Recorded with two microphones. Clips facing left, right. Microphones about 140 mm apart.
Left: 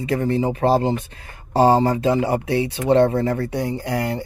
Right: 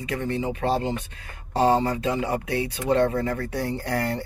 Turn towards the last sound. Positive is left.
turn(degrees=15)  # may be behind; listen again after turning